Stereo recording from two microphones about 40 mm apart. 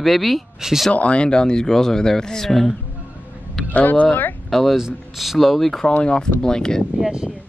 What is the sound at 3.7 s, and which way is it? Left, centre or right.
Speech, left.